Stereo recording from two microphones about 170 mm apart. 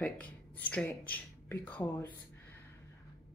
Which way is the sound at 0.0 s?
10° left (ahead or behind).